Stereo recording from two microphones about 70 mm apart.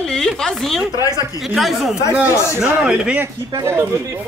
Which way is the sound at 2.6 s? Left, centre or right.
Centre.